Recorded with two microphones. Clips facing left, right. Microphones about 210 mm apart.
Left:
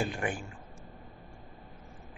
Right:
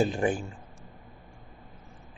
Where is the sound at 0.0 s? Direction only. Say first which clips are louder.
Right 7 dB; 25° right (ahead or behind).